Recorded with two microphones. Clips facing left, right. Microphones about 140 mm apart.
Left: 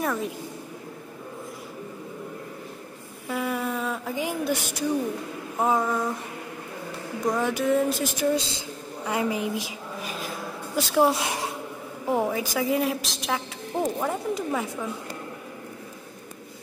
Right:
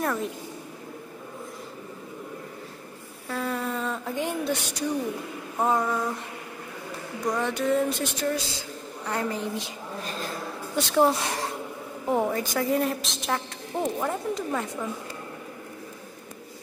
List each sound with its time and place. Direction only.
0.0 s a woman's voice: centre (ahead or behind)
3.3 s speech: 10° left (ahead or behind)
5.6 s a woman's voice: centre (ahead or behind)
7.2 s a woman's voice: 5° left (ahead or behind)
8.3 s speech: 20° left (ahead or behind)
9.0 s a woman's voice: 10° left (ahead or behind)
12.1 s a woman's voice: centre (ahead or behind)